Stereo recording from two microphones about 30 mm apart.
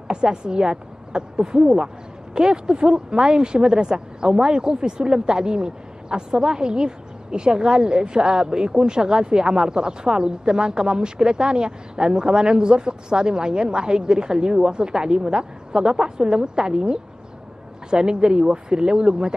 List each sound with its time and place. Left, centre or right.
0.1 s speech: right